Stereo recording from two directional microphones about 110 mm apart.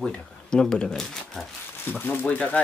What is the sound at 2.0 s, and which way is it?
Speech, 15° left (ahead or behind).